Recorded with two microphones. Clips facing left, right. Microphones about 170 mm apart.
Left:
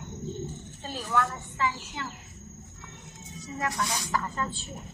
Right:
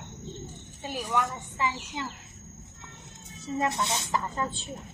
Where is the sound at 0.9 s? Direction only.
15° right (ahead or behind).